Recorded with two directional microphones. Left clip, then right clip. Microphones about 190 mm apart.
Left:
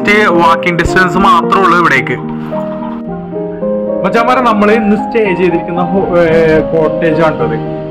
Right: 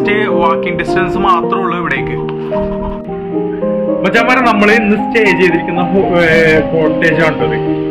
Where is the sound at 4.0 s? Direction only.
15° left (ahead or behind).